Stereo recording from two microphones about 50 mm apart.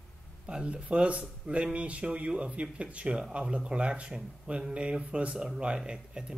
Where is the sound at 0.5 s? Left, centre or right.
Centre.